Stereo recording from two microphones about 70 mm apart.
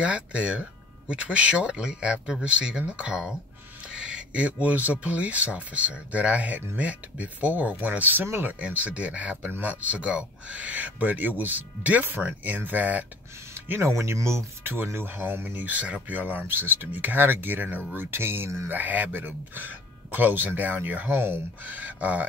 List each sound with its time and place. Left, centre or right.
0.0 s speech: centre; by 8.5 s right
8.5 s speech: centre
13.7 s speech: right
14.7 s speech: right